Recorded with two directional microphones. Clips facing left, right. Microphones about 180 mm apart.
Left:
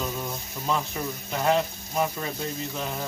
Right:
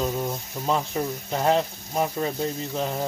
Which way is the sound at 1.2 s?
30° right (ahead or behind).